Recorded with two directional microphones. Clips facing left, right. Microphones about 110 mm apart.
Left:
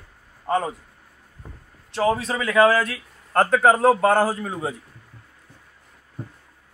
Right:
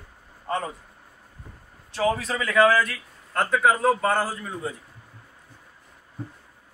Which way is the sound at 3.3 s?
60° left (ahead or behind).